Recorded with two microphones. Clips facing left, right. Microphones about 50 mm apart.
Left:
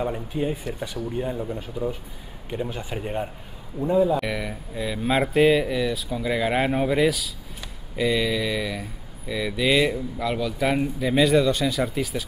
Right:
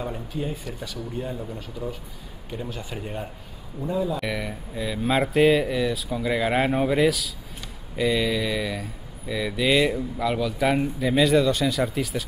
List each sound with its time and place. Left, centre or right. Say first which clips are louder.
0.0 s speech: left 4 dB; left
2.5 s speech: left 4 dB; left
4.2 s speech: left 1 dB; centre